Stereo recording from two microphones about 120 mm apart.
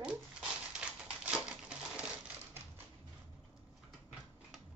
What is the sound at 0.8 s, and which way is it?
Typewriter, 10° right (ahead or behind).